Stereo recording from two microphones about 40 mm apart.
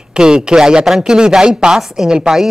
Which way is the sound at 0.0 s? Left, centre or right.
Centre.